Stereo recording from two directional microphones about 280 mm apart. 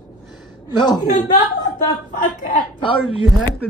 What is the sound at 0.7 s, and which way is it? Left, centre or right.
Speech, centre.